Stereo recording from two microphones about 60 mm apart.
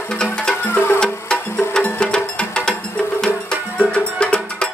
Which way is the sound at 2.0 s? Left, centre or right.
Centre.